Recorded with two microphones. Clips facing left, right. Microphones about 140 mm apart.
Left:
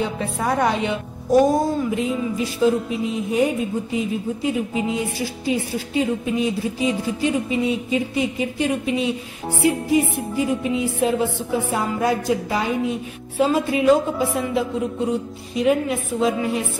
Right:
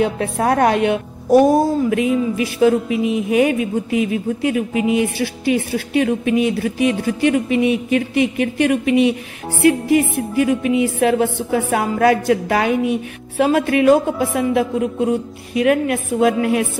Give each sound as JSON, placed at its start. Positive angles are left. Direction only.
{"t": 0.0, "sound": "a woman's voice", "side_deg": -65}
{"t": 1.9, "sound": "a sound", "side_deg": -70}
{"t": 13.4, "sound": "a woman's voice", "side_deg": -65}